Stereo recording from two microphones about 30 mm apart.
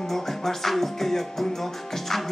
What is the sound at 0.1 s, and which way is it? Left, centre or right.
Music, centre.